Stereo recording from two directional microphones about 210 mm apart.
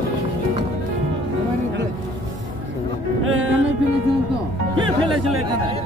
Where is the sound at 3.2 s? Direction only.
70° right (ahead or behind).